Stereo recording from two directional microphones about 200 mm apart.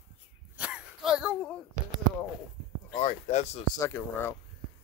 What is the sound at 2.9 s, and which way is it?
Speech, 35° left (ahead or behind).